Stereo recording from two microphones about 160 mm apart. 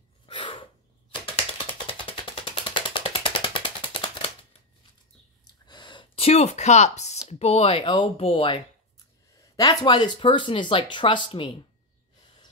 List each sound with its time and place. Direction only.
0.3 s sneeze: 30° left (ahead or behind)
1.2 s a sound: 35° left (ahead or behind)
5.7 s speech: 30° left (ahead or behind)
9.6 s speech: 25° left (ahead or behind)